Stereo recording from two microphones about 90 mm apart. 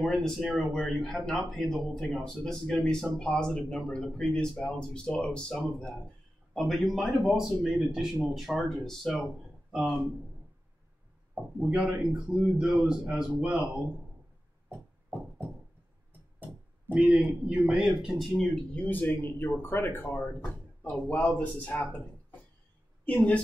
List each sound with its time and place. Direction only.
0.0 s a man's voice: 5° left (ahead or behind)
6.5 s a man's voice: centre (ahead or behind)
11.3 s a man's voice: 5° right (ahead or behind)
16.9 s a man's voice: 15° right (ahead or behind)
17.8 s a man's voice: 5° right (ahead or behind)
18.8 s speech: 20° left (ahead or behind)
23.0 s speech: 15° left (ahead or behind)